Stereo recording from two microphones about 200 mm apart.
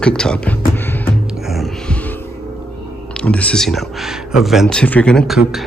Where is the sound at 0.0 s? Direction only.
5° left (ahead or behind).